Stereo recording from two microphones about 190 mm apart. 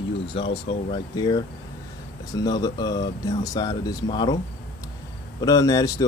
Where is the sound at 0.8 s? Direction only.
20° left (ahead or behind).